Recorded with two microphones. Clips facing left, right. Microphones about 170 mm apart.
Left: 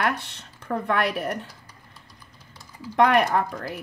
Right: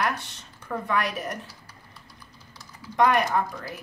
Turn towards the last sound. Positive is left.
turn(degrees=65)  # may be behind; listen again after turning